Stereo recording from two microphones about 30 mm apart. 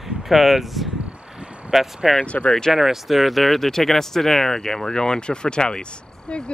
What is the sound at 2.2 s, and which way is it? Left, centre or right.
Speech, left.